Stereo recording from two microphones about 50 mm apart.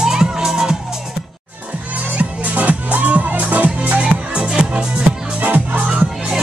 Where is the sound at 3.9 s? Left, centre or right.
Right.